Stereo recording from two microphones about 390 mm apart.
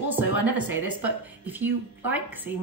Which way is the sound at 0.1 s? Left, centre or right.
Centre.